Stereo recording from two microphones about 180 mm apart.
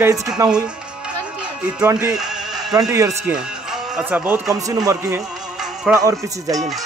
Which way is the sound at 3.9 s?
10° right (ahead or behind).